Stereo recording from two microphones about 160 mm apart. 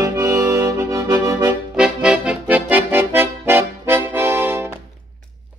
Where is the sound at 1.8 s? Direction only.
5° right (ahead or behind).